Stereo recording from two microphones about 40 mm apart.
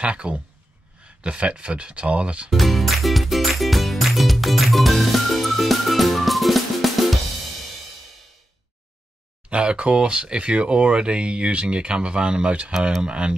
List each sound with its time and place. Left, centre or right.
0.0 s speech: right
2.5 s music: centre
9.5 s speech: right